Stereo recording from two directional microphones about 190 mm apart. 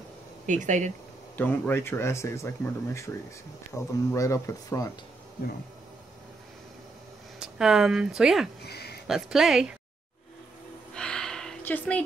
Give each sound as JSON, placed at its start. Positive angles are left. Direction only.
{"t": 0.5, "sound": "speech", "side_deg": -40}
{"t": 1.3, "sound": "speech", "side_deg": 10}
{"t": 7.3, "sound": "speech", "side_deg": -5}
{"t": 8.6, "sound": "a sound", "side_deg": 60}
{"t": 9.0, "sound": "speech", "side_deg": 0}
{"t": 10.9, "sound": "a sound", "side_deg": 5}